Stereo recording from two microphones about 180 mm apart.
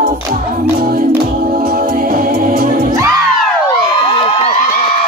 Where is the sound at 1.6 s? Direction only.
55° right (ahead or behind).